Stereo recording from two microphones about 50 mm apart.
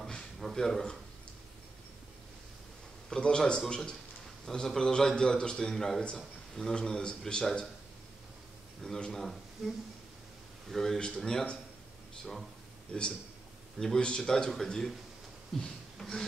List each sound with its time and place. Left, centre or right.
0.1 s a sound: centre
3.1 s a man's voice: centre
8.8 s a man's voice: centre
10.7 s a man's voice: centre
12.9 s a man's voice: centre